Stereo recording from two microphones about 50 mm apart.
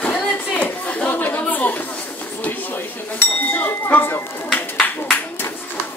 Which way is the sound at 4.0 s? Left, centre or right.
Left.